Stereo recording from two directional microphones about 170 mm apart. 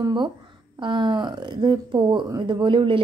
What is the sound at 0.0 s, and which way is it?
Speech, 25° right (ahead or behind).